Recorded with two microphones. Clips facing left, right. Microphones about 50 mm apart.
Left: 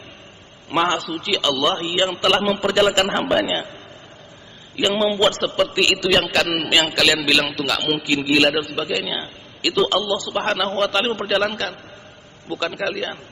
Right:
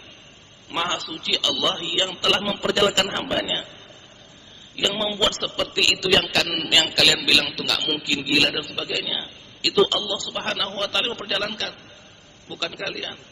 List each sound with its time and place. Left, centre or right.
0.7 s a man's voice: centre
4.7 s a man's voice: centre
12.4 s a man's voice: centre